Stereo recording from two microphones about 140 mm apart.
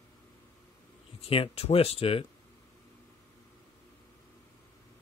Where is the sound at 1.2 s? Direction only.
40° left (ahead or behind).